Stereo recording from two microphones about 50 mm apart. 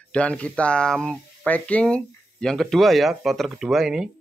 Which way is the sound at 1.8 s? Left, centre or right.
Centre.